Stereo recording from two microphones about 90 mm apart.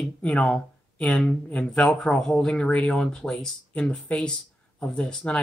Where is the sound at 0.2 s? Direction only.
10° left (ahead or behind).